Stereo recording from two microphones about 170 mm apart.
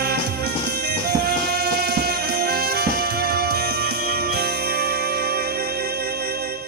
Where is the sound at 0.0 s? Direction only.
70° right (ahead or behind).